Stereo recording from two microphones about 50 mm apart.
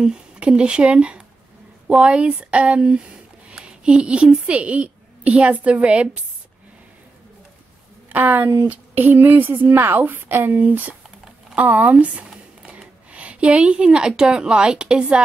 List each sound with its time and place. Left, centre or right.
0.0 s speech: centre
8.1 s speech: right
12.3 s whispering: centre
13.1 s speech: right